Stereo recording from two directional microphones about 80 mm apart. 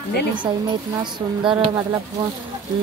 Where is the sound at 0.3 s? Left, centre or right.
Right.